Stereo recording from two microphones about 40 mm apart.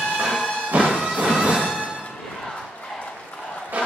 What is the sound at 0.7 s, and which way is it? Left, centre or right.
Music, right.